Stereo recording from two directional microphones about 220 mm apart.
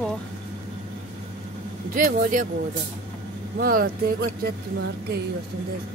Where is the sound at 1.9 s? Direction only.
40° right (ahead or behind).